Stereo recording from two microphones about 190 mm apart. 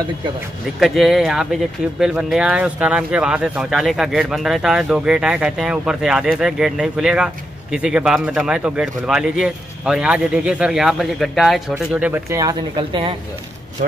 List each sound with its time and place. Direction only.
0.7 s speech: centre (ahead or behind); by 13.1 s 25° right (ahead or behind)